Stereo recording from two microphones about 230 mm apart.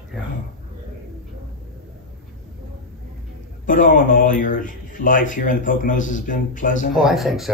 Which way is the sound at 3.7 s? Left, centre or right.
Left.